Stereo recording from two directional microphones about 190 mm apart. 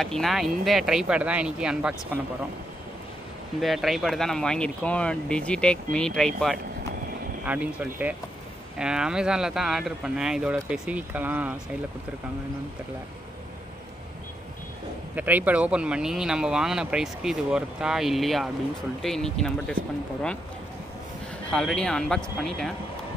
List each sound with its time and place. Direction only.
0.0 s speech: centre (ahead or behind)
3.6 s speech: centre (ahead or behind)
15.1 s speech: 10° right (ahead or behind)
21.5 s speech: 5° left (ahead or behind)